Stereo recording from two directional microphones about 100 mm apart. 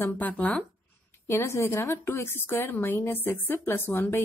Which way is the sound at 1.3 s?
25° left (ahead or behind).